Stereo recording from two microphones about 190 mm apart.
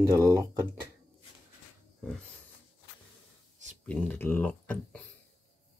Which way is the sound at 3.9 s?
10° left (ahead or behind).